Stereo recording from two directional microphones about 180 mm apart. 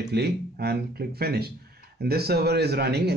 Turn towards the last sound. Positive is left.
turn(degrees=-65)  # may be behind; listen again after turning